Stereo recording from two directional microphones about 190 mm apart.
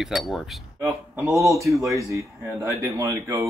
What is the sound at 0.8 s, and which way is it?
Speech, 15° right (ahead or behind).